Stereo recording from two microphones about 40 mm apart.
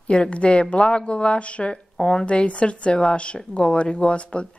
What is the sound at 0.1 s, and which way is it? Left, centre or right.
Speech, left.